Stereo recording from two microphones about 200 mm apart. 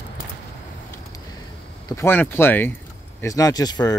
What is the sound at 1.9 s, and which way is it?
Speech, 10° left (ahead or behind).